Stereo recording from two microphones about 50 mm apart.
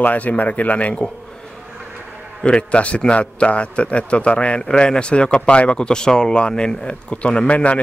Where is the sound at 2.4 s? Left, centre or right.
Left.